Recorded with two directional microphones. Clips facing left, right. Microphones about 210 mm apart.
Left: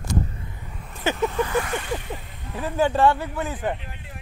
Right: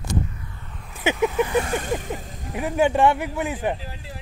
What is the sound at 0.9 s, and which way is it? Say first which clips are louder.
Vehicle: right 2 dB; 5° right (ahead or behind).